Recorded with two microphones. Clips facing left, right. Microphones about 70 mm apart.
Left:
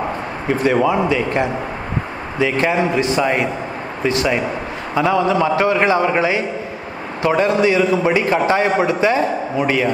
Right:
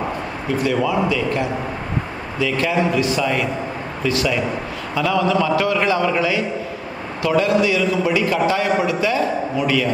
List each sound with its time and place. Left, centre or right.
0.5 s a man's voice: left